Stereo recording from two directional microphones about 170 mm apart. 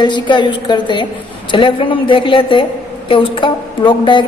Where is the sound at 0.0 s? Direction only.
25° left (ahead or behind).